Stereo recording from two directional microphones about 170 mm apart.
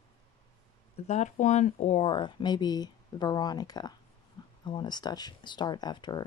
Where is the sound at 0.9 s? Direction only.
40° left (ahead or behind).